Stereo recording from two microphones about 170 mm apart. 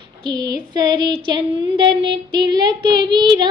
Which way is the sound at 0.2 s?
25° right (ahead or behind).